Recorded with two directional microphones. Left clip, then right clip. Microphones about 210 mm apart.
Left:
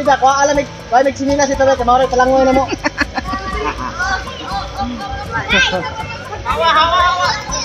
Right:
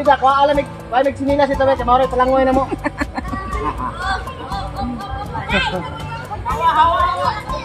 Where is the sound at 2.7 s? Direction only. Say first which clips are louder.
Left 5 dB; 5° right (ahead or behind).